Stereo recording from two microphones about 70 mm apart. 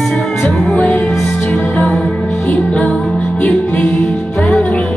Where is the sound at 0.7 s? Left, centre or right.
Centre.